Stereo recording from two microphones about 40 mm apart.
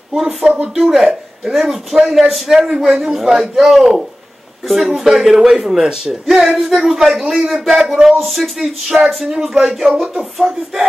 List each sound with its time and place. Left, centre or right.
0.1 s speech: centre